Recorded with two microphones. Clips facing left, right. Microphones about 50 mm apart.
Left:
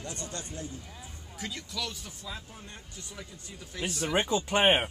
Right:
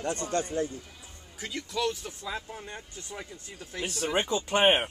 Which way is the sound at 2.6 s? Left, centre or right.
Right.